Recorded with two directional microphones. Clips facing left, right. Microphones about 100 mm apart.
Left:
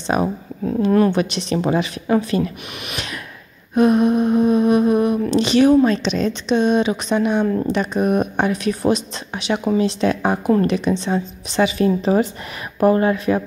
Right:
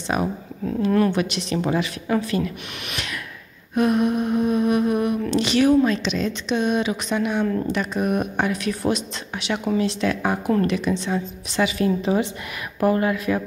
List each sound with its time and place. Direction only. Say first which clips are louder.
0.0 s speech: left 4 dB; 30° left (ahead or behind)
3.7 s speech: left 5 dB; 25° left (ahead or behind)
5.8 s speech: left 4 dB; 35° left (ahead or behind)
6.5 s speech: left 5 dB; 25° left (ahead or behind)